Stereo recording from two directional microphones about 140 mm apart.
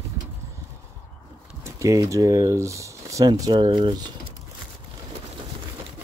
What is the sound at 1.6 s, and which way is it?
Speech, 20° right (ahead or behind).